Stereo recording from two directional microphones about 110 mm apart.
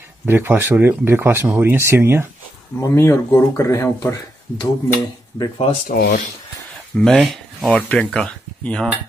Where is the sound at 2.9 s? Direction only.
25° left (ahead or behind).